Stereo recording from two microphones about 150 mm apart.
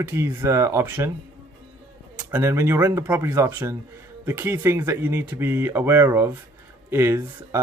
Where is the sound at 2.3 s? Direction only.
15° right (ahead or behind).